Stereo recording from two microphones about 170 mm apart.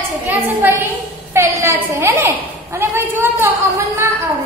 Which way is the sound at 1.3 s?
15° right (ahead or behind).